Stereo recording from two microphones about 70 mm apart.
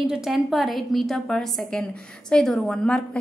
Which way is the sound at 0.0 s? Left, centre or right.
Centre.